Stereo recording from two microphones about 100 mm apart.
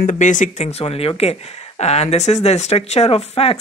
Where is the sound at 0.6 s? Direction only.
90° left.